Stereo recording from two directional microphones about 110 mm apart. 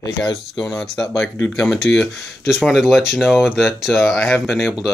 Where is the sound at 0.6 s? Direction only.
5° left (ahead or behind).